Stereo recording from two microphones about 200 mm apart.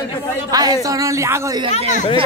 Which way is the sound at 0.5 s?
20° right (ahead or behind).